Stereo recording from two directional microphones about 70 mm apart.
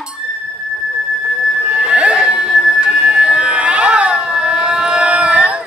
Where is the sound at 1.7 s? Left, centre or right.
Centre.